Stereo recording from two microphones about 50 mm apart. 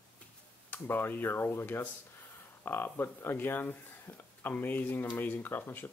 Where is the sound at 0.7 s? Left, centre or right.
Left.